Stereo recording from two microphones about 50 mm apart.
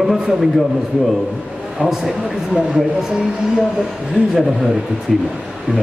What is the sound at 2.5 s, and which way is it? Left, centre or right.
Speech, centre.